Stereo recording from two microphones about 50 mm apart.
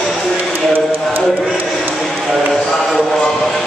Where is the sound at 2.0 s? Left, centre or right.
Centre.